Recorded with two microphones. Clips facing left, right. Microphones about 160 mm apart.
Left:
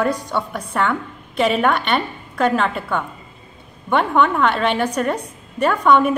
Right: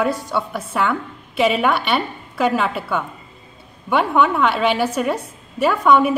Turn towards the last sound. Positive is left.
turn(degrees=-5)  # may be behind; listen again after turning